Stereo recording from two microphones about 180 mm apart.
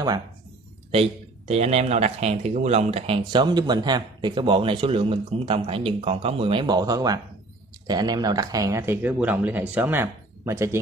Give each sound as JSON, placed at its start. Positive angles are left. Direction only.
{"t": 1.5, "sound": "speech", "side_deg": -35}